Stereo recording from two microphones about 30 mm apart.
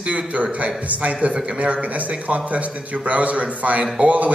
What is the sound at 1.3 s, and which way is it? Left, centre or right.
Speech, right.